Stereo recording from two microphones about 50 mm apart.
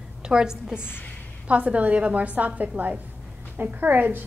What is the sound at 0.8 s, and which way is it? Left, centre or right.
Speech, left.